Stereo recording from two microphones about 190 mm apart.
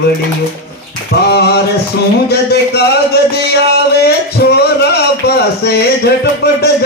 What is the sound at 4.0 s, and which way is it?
Speech, 60° left (ahead or behind).